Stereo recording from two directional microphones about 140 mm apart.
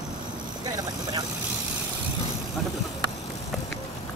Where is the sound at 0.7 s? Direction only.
30° right (ahead or behind).